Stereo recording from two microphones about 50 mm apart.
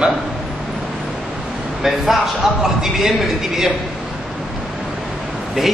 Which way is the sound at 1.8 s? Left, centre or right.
Centre.